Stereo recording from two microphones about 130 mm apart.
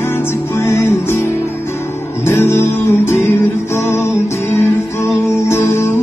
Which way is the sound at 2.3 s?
20° left (ahead or behind).